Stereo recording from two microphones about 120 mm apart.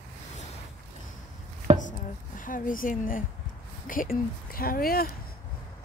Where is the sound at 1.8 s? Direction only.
90° left.